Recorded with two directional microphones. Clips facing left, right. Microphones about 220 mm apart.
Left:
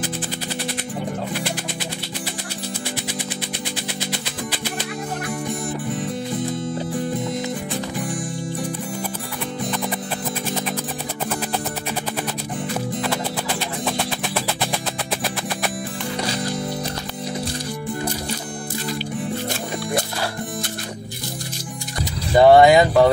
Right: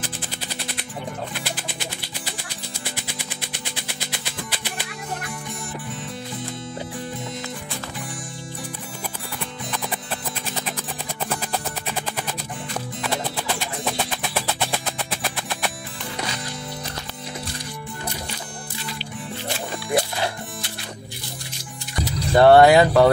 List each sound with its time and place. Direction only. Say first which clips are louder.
22.0 s vehicle: left 1 dB; centre (ahead or behind)